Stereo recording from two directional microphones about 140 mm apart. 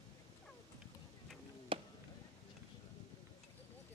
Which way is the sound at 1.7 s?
40° right (ahead or behind).